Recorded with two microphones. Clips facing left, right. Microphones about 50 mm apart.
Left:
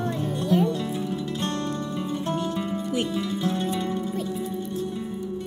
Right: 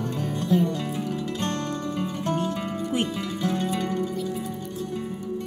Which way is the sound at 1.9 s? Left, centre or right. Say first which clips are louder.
Right 2 dB; right.